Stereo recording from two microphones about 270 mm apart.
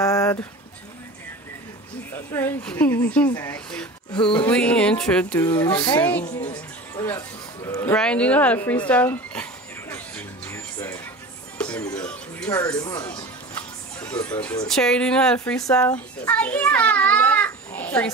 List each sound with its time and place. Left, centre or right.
0.0 s a sound: centre
2.1 s a woman's voice: centre
6.2 s speech: left
7.0 s a sound: centre
11.5 s a woman's voice: centre
13.9 s music: centre
14.3 s a woman's voice: centre
14.7 s a child's voice: centre